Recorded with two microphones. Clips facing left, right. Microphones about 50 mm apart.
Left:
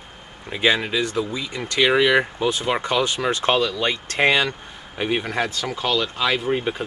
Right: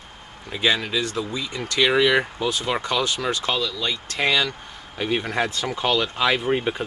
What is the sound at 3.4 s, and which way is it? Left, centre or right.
Speech, left.